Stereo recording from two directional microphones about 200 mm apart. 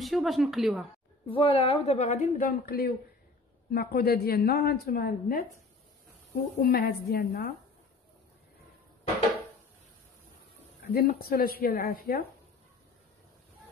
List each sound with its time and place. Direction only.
0.0 s speech: centre (ahead or behind)
1.2 s a woman's voice: 25° left (ahead or behind); by 5.4 s 45° left (ahead or behind)
6.6 s a woman's voice: 50° left (ahead or behind)
10.8 s a woman's voice: 50° left (ahead or behind)